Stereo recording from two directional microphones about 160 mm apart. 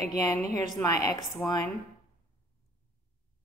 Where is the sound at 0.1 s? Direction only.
25° left (ahead or behind).